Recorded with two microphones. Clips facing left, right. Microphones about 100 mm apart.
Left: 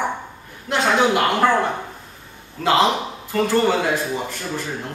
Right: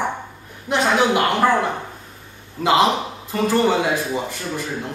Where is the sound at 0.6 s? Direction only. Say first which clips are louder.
Even; 5° right (ahead or behind).